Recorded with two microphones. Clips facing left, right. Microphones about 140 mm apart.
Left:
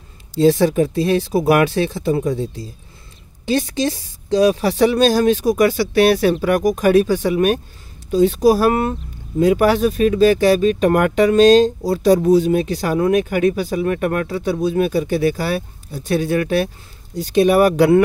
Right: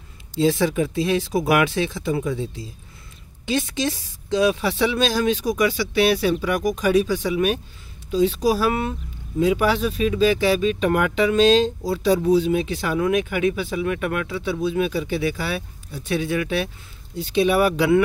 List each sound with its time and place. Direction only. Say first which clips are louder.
0.4 s speech: left 6 dB; 40° left (ahead or behind)